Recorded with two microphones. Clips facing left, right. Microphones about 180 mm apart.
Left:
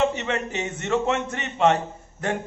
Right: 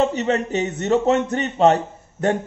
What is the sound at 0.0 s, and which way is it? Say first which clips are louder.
A man's voice: right 4 dB; 35° right (ahead or behind).